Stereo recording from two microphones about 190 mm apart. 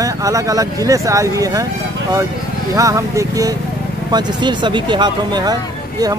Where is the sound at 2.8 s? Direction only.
15° right (ahead or behind).